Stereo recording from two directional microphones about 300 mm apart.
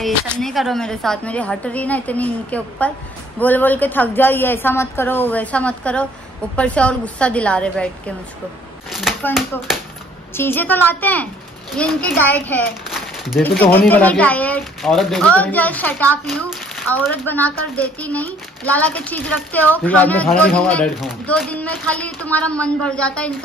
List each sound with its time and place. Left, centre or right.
0.3 s speech: centre
8.9 s a woman's voice: centre